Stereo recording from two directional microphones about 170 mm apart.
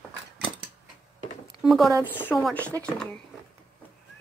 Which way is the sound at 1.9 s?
10° right (ahead or behind).